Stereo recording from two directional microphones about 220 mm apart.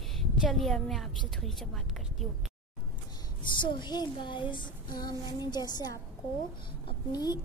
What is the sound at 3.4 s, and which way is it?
Child singing, 20° left (ahead or behind).